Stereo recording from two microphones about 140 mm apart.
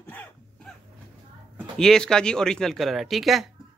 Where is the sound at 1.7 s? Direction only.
5° left (ahead or behind).